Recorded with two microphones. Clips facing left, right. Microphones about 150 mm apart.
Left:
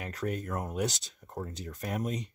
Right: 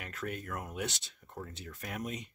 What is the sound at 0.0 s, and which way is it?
Speech, 35° left (ahead or behind).